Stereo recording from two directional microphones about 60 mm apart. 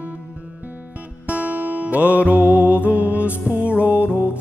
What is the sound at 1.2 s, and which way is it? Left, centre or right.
Music, right.